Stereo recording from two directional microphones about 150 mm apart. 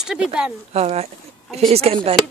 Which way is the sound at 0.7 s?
45° right (ahead or behind).